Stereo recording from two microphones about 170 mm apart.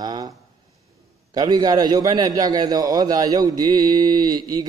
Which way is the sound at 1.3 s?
25° right (ahead or behind).